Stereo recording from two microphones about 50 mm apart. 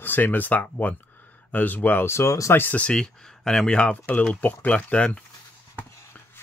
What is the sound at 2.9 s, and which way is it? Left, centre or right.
Speech, centre.